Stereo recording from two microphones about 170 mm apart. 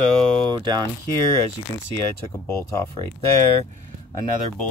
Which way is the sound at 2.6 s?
15° left (ahead or behind).